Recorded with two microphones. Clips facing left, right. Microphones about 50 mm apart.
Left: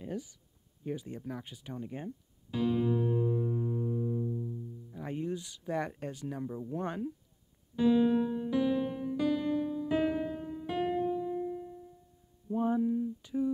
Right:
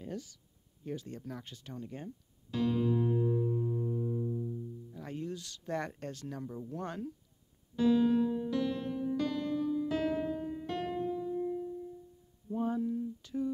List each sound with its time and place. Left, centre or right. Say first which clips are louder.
0.0 s speech: left 3 dB; centre
3.3 s music: even; centre
4.9 s speech: left 5 dB; centre
7.7 s music: left 1 dB; centre
12.4 s a sound: left 4 dB; centre